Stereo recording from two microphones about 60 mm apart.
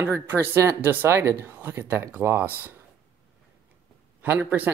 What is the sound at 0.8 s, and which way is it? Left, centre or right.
Speech, right.